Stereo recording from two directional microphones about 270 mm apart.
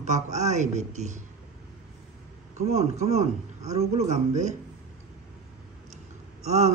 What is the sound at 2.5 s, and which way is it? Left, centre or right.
A man's voice, right.